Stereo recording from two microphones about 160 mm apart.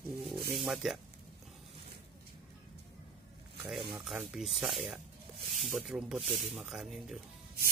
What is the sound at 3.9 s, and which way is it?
Speech, 5° right (ahead or behind).